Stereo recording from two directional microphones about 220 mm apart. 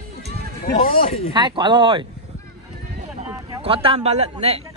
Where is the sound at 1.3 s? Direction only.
20° right (ahead or behind).